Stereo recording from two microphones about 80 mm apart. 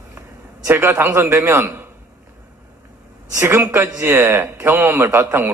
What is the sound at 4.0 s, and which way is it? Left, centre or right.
A man's voice, right.